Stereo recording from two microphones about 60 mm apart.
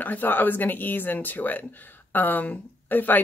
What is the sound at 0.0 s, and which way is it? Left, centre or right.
A woman's voice, left.